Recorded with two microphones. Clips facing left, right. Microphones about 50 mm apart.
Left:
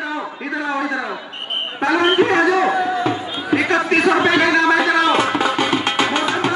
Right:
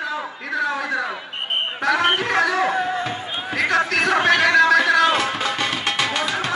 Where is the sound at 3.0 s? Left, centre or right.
Left.